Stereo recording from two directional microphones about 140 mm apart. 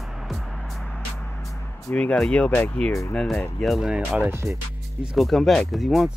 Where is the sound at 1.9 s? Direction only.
5° left (ahead or behind).